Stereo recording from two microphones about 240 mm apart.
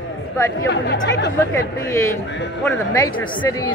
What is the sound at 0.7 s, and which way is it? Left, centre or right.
Speech, left.